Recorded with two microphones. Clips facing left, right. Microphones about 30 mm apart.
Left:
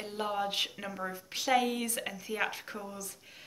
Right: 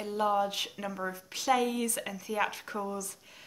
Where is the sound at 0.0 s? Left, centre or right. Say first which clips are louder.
Right 5 dB; centre.